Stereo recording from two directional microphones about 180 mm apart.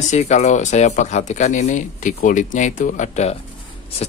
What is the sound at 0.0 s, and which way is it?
Speech, 40° left (ahead or behind).